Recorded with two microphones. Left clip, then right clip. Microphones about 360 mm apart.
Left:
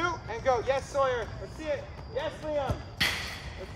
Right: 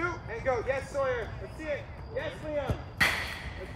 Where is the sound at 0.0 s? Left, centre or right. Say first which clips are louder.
Left 3 dB; centre.